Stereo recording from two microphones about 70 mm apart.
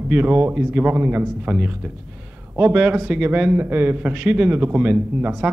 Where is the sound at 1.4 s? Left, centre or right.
Centre.